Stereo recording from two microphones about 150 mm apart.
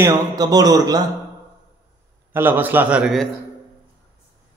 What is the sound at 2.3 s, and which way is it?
Speech, 15° right (ahead or behind).